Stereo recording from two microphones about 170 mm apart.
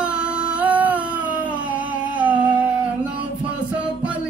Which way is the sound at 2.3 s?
30° right (ahead or behind).